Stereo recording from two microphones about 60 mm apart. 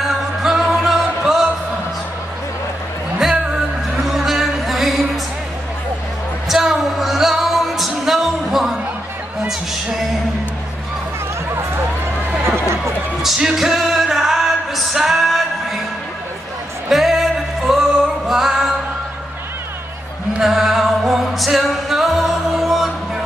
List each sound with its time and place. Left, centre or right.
0.4 s music: centre
3.2 s music: centre
6.5 s music: centre
13.2 s music: centre
16.9 s music: centre
18.0 s singing: centre
20.3 s music: centre